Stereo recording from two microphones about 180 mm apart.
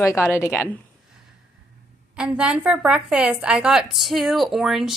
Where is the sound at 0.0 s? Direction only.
15° left (ahead or behind).